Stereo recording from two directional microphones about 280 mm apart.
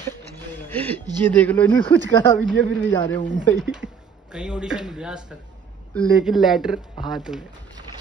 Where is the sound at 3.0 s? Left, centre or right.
Centre.